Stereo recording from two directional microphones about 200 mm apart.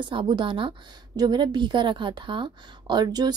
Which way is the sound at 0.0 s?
25° right (ahead or behind).